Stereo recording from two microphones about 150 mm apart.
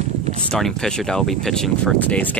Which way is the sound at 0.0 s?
45° right (ahead or behind).